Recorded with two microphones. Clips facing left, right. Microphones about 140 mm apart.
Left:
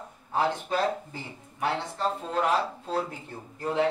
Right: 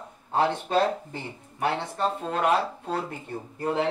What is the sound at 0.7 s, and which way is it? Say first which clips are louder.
Speech: right 3 dB; 60° right (ahead or behind).